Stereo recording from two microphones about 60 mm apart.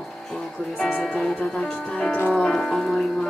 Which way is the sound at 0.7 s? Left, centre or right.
Centre.